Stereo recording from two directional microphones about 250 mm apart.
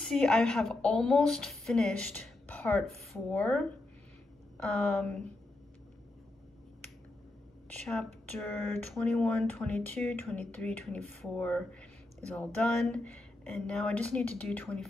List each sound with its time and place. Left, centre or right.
0.0 s speech: centre
7.9 s speech: centre